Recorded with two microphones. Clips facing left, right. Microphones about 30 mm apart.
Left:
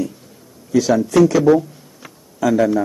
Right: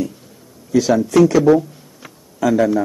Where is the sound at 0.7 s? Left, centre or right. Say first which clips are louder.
Even; centre.